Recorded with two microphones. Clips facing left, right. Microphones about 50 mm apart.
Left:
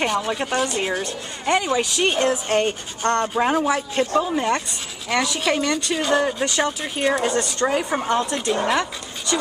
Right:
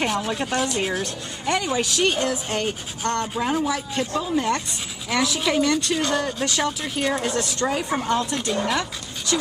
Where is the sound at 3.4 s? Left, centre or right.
Left.